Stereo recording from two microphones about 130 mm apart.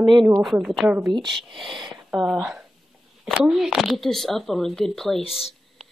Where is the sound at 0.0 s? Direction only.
35° right (ahead or behind).